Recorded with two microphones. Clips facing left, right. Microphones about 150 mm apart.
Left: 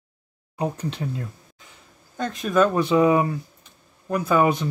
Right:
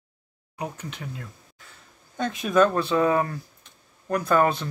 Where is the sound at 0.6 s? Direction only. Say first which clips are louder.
Left 7 dB; 30° left (ahead or behind).